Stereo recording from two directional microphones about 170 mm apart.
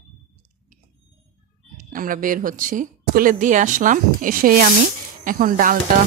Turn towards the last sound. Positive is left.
turn(degrees=-55)  # may be behind; listen again after turning